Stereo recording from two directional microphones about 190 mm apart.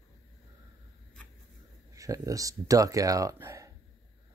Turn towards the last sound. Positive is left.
turn(degrees=-15)  # may be behind; listen again after turning